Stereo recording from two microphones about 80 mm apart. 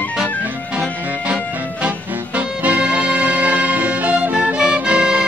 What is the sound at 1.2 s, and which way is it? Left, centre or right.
Music, centre.